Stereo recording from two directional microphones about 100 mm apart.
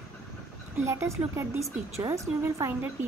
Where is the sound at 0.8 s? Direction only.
25° right (ahead or behind).